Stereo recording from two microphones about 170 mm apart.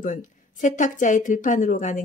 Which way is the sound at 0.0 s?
50° left (ahead or behind).